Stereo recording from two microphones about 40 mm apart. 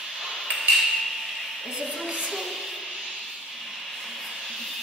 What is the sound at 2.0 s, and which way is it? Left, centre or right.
Music, right.